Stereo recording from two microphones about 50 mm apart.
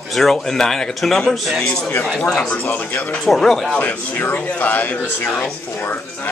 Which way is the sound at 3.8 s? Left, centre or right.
Left.